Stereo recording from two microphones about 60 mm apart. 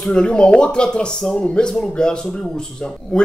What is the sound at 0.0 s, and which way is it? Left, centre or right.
A man's voice, centre.